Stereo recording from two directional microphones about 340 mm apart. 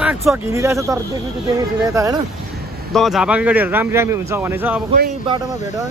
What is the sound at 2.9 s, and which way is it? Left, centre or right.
Speech, centre.